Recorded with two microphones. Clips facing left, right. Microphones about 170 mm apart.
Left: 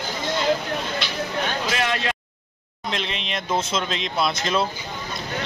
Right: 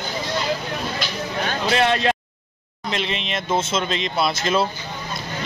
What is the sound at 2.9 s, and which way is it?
Speech, centre (ahead or behind).